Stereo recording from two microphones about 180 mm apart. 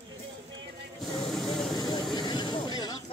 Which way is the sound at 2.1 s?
25° left (ahead or behind).